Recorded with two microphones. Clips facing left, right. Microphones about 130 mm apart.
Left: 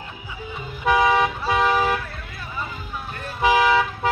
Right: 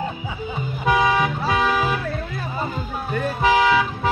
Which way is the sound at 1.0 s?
Centre (ahead or behind).